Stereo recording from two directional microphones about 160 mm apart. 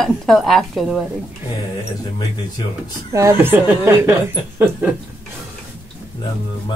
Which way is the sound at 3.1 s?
15° right (ahead or behind).